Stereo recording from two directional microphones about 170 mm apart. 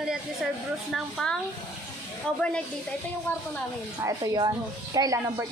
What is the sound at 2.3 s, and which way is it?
Speech, 5° left (ahead or behind).